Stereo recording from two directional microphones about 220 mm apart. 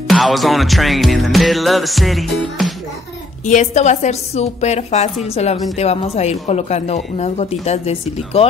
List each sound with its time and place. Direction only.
0.1 s music: centre (ahead or behind)
3.4 s a woman's voice: 35° left (ahead or behind)